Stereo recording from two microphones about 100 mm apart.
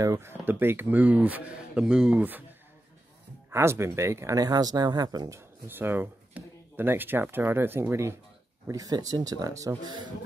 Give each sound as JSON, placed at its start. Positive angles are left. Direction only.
{"t": 0.0, "sound": "speech", "side_deg": -30}
{"t": 3.4, "sound": "speech", "side_deg": -25}
{"t": 5.7, "sound": "speech", "side_deg": -20}
{"t": 8.6, "sound": "speech", "side_deg": -40}
{"t": 9.8, "sound": "a man's voice", "side_deg": -45}